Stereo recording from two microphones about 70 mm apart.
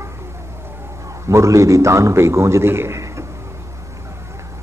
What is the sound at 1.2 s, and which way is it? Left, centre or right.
A man's voice, right.